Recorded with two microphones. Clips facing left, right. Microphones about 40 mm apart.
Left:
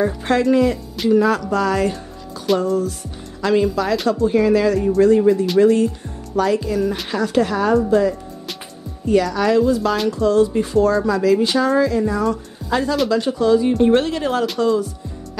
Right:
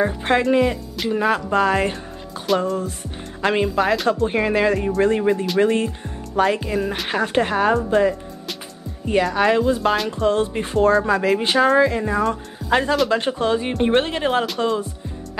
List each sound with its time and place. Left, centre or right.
0.0 s speech: right
2.5 s music: centre
3.4 s speech: right
9.0 s speech: right